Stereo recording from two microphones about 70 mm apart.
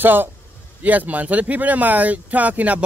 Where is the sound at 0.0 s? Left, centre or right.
Right.